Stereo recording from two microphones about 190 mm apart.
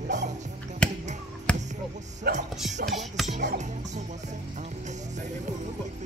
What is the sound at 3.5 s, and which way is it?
Music, 40° right (ahead or behind).